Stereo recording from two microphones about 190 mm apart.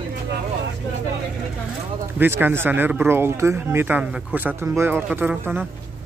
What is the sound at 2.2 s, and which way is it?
Speech, 10° right (ahead or behind).